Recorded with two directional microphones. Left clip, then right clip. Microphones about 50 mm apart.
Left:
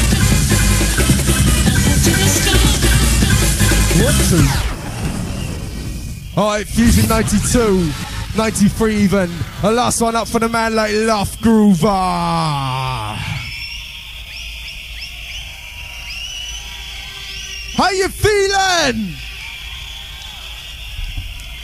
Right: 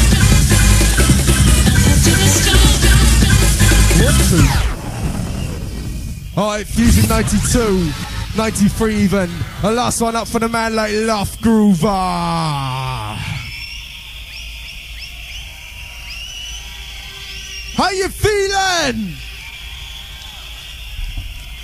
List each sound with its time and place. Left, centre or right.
0.0 s music: right
6.3 s speech: right
12.8 s a sound: right
17.7 s speech: right